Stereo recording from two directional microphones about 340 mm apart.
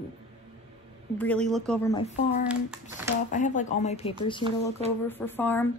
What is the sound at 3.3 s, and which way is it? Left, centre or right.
Speech, left.